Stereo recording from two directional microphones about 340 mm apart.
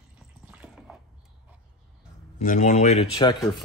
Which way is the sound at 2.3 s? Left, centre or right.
Left.